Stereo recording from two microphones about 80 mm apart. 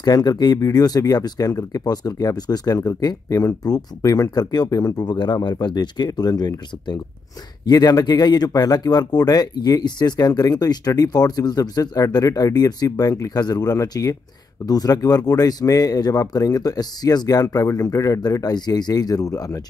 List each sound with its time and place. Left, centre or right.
0.0 s speech: left